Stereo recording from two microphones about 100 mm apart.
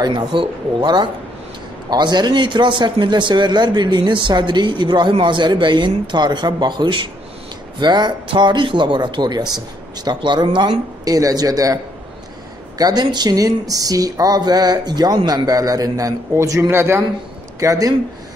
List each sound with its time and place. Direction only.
0.0 s a man's voice: 50° right (ahead or behind)
11.1 s speech: 35° right (ahead or behind)
17.6 s speech: 35° right (ahead or behind)